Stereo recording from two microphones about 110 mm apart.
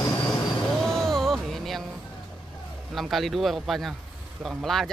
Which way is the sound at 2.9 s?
Centre (ahead or behind).